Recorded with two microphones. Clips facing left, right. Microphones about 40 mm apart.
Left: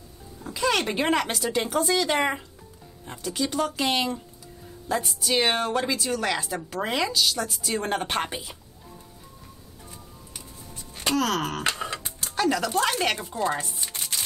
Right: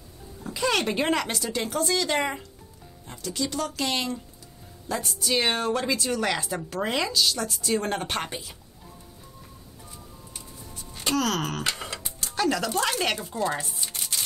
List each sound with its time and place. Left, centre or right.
0.4 s music: centre
1.3 s speech: centre
4.8 s speech: centre
8.0 s speech: centre
11.1 s speech: centre
13.3 s speech: left